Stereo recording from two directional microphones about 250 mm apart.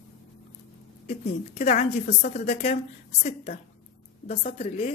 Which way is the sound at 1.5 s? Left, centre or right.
Left.